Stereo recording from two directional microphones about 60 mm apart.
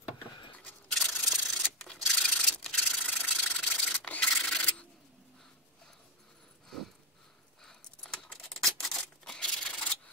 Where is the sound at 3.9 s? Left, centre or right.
Left.